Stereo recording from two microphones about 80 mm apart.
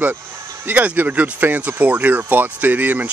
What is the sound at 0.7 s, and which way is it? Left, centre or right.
Speech, right.